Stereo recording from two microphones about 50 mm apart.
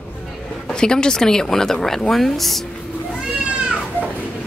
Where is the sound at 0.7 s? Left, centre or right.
Centre.